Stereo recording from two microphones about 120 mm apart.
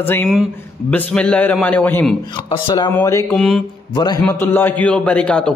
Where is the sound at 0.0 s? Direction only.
15° left (ahead or behind).